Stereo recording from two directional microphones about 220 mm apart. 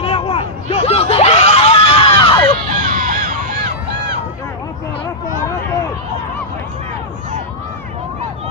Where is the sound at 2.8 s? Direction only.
35° right (ahead or behind).